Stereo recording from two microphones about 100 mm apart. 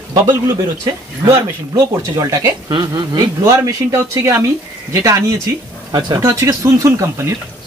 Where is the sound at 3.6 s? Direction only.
30° right (ahead or behind).